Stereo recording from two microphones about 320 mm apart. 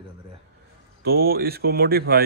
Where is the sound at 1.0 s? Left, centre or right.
Right.